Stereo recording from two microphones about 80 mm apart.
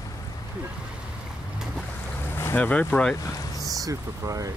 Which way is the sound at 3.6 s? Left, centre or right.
Right.